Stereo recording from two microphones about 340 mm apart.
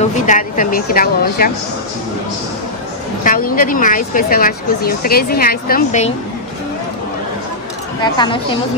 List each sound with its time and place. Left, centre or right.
0.0 s speech: left
3.3 s speech: left
8.0 s a woman's voice: centre